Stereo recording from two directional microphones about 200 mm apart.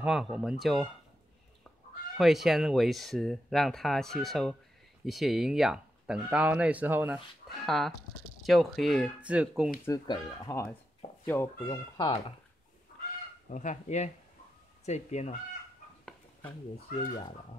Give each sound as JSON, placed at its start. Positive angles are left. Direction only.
{"t": 0.0, "sound": "speech", "side_deg": -5}
{"t": 2.1, "sound": "speech", "side_deg": 0}
{"t": 9.8, "sound": "speech", "side_deg": 20}
{"t": 13.5, "sound": "speech", "side_deg": 40}